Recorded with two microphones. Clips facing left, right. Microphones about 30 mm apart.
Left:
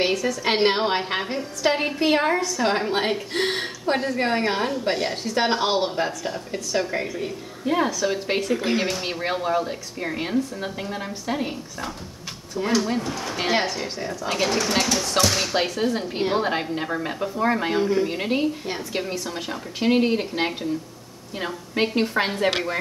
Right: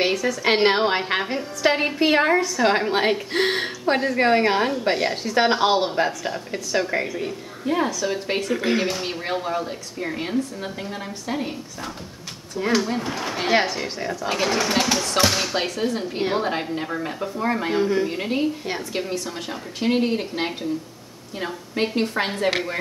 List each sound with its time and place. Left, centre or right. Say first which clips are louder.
0.0 s a woman's voice: right 1 dB; centre
13.0 s speech: right 2 dB; right
13.5 s a woman's voice: right 3 dB; centre